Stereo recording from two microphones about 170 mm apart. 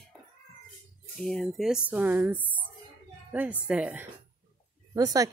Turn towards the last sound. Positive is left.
turn(degrees=-20)  # may be behind; listen again after turning